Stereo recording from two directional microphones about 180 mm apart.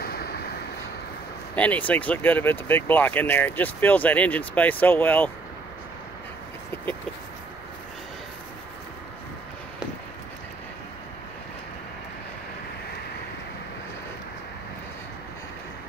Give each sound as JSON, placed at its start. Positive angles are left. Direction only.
{"t": 0.0, "sound": "vehicle", "side_deg": 60}
{"t": 1.5, "sound": "speech", "side_deg": 10}